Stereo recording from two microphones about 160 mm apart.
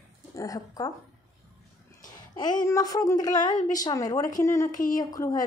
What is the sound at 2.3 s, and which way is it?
A woman's voice, 25° left (ahead or behind).